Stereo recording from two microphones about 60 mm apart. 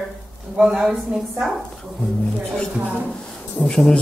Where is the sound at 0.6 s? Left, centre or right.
Centre.